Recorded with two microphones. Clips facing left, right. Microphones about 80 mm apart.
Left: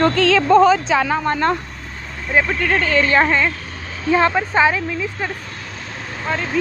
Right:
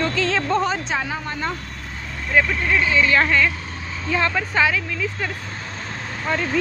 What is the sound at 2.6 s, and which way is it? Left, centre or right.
Speech, left.